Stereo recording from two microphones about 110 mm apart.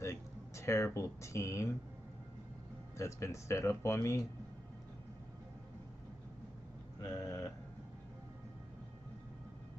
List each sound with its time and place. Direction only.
0.0 s speech: 25° left (ahead or behind)
3.0 s speech: 25° left (ahead or behind)
7.0 s a sound: 30° left (ahead or behind)